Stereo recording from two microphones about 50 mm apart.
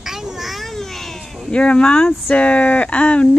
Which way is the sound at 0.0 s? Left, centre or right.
Centre.